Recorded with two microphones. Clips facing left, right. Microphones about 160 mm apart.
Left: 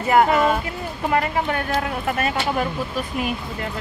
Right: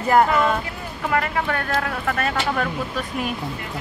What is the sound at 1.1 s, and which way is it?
Speech, 25° left (ahead or behind).